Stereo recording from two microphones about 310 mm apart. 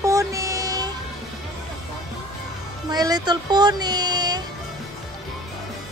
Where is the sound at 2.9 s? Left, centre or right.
Centre.